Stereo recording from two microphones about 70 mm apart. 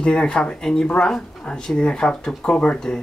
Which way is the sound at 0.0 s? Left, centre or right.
Centre.